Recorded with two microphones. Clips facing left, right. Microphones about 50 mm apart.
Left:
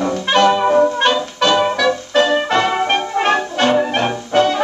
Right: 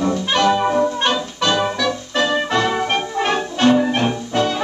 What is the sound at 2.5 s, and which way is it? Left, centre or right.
Music, left.